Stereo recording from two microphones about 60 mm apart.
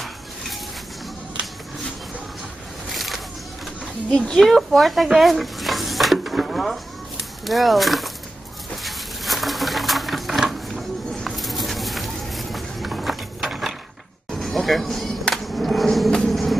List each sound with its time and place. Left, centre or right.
2.9 s a sound: centre
4.1 s speech: left
4.4 s dishes: centre
7.4 s speech: centre
8.8 s a sound: centre
16.3 s vehicle: centre